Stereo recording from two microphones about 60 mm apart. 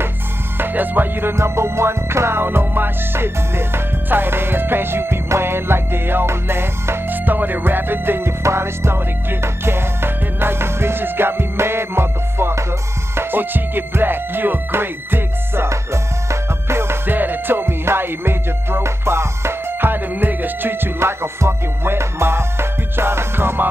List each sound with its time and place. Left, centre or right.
0.6 s speech: right
1.3 s music: right
15.7 s music: right